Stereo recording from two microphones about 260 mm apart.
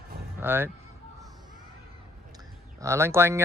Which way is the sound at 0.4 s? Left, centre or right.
Centre.